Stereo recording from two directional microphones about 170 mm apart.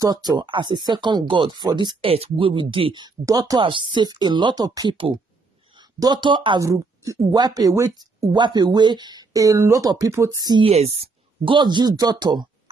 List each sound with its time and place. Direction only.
0.0 s speech: 25° right (ahead or behind)
10.7 s speech: 40° right (ahead or behind)
11.4 s speech: 30° right (ahead or behind)